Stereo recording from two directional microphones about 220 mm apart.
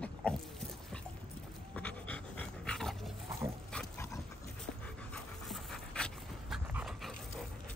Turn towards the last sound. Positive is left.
turn(degrees=-5)  # may be behind; listen again after turning